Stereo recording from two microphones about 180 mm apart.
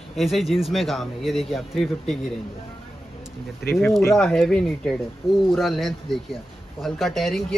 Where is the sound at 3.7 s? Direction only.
15° left (ahead or behind).